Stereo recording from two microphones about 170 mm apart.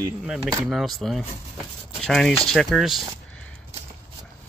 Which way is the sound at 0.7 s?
Centre (ahead or behind).